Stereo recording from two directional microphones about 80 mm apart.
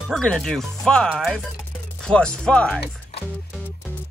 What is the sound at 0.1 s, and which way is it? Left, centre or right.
Speech, centre.